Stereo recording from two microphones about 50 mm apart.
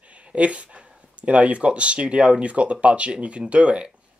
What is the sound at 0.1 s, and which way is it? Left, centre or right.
Speech, right.